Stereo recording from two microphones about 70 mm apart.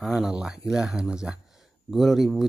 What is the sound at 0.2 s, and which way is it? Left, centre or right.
Speech, centre.